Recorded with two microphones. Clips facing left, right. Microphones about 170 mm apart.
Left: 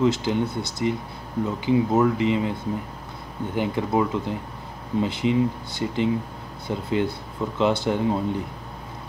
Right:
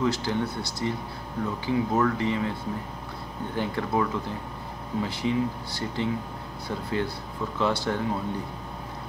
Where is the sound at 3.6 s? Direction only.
20° left (ahead or behind).